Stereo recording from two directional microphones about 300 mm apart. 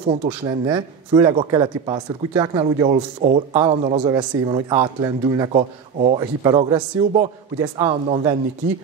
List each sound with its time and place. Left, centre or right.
0.1 s speech: centre